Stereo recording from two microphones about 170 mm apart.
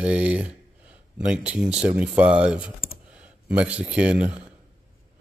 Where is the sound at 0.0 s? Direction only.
5° right (ahead or behind).